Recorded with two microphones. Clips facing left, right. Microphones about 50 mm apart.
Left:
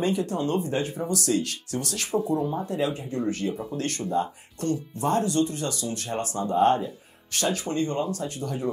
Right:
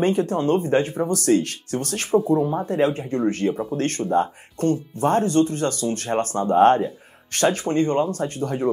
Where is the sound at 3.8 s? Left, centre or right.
Right.